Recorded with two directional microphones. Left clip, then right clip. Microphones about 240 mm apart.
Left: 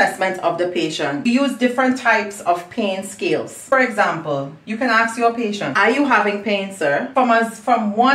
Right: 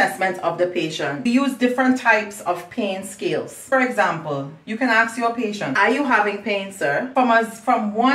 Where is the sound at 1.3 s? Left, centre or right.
Centre.